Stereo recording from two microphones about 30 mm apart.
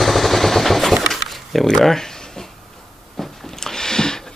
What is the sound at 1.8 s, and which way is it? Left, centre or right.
Speech, centre.